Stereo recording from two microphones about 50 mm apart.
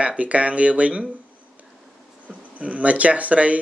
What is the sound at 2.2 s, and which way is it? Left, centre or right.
Speech, right.